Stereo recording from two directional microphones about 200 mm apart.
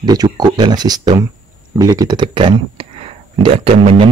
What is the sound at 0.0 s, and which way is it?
Speech, 20° right (ahead or behind).